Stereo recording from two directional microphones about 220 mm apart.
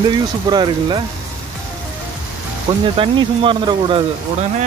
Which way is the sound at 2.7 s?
20° right (ahead or behind).